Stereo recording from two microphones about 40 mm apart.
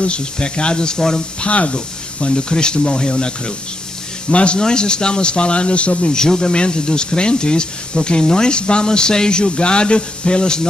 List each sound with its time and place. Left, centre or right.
0.0 s speech: left
1.4 s speech: left
6.1 s speech: centre